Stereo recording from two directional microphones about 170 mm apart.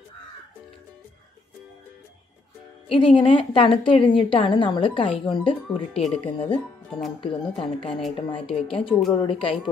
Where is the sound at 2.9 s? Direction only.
30° left (ahead or behind).